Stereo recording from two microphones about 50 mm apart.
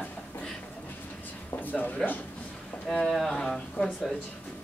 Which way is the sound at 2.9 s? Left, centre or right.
Centre.